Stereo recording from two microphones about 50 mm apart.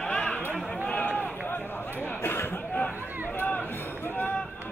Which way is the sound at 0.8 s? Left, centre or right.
Left.